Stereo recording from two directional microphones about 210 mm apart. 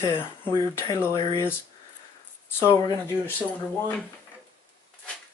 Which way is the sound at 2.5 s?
15° left (ahead or behind).